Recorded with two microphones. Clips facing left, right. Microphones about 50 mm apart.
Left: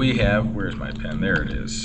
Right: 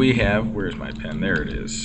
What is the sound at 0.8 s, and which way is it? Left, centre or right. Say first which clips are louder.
Speech: even; right.